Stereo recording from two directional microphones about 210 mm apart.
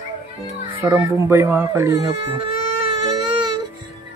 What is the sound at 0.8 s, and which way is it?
Speech, 10° right (ahead or behind).